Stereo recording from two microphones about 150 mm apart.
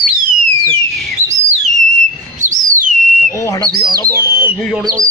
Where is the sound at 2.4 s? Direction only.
60° right (ahead or behind).